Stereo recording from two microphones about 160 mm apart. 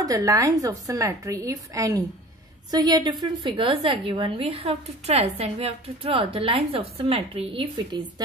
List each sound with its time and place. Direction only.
0.0 s a woman's voice: 20° right (ahead or behind)